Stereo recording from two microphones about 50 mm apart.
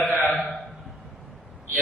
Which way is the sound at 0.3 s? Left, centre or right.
Left.